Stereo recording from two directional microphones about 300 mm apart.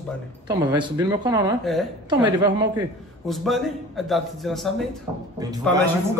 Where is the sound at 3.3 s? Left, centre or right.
Centre.